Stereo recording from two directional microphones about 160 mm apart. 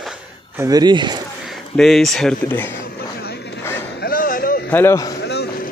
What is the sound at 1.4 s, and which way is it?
Speech, centre (ahead or behind).